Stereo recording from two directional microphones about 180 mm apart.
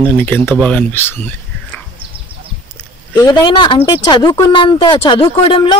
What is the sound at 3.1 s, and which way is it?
Speech, 20° left (ahead or behind).